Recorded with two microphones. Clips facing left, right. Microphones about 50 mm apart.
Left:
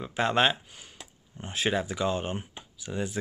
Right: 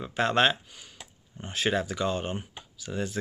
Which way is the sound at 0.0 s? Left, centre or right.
Centre.